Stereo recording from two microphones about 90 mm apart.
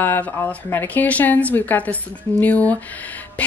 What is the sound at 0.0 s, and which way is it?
A woman's voice, 20° left (ahead or behind).